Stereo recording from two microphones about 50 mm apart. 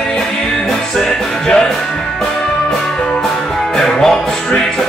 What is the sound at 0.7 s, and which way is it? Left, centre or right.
Music, centre.